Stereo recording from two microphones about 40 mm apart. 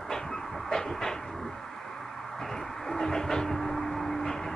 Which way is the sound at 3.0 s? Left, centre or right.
Centre.